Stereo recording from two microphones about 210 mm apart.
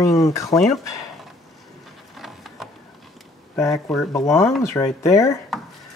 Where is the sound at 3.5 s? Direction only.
15° left (ahead or behind).